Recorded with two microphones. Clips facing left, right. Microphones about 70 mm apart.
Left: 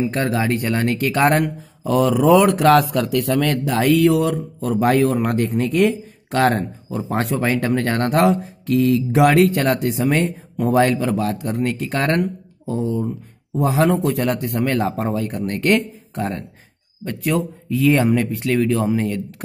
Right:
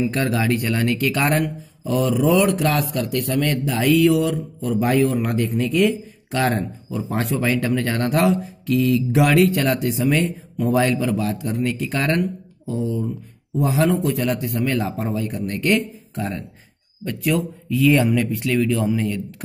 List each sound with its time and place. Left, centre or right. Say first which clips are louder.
0.0 s speech: left 1 dB; left
1.4 s speech: left 2 dB; left
3.3 s speech: left 3 dB; left
3.6 s speech: even; left
17.0 s speech: left 1 dB; left